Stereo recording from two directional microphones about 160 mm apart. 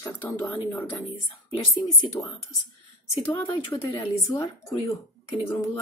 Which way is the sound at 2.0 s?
20° left (ahead or behind).